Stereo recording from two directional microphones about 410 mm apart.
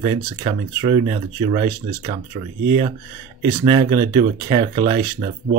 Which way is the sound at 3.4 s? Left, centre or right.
Centre.